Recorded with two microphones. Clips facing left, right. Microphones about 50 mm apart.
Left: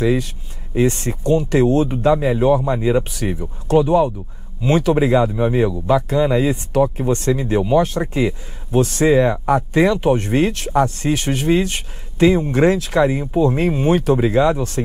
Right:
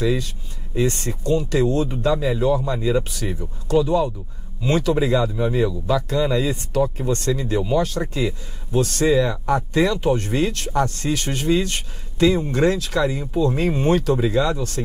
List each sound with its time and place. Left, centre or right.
0.0 s speech: left
13.7 s speech: centre
13.9 s speech: left